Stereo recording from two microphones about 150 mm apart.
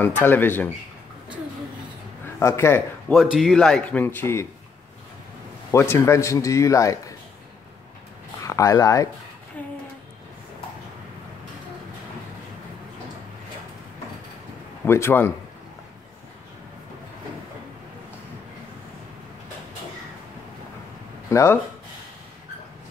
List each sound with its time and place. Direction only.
0.0 s speech: 15° left (ahead or behind)
2.4 s speech: 15° left (ahead or behind)
3.1 s a man's voice: centre (ahead or behind); by 4.5 s 15° left (ahead or behind)
5.7 s a man's voice: 15° left (ahead or behind)
8.5 s a man's voice: 20° left (ahead or behind)
9.6 s a sound: 10° left (ahead or behind)
14.9 s speech: 15° left (ahead or behind)
21.3 s speech: 20° left (ahead or behind)